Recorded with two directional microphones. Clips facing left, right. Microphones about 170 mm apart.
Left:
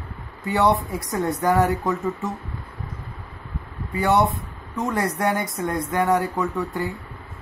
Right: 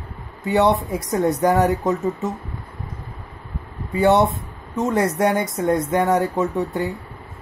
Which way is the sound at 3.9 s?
25° right (ahead or behind).